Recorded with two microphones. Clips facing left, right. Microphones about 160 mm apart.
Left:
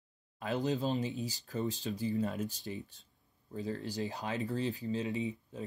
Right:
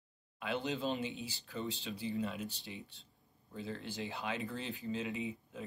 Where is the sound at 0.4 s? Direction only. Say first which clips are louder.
Left 4 dB; 40° left (ahead or behind).